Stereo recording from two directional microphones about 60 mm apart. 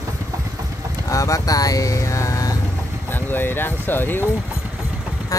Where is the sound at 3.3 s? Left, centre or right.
Left.